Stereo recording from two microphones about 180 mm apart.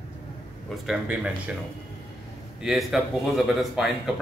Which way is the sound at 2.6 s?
Centre (ahead or behind).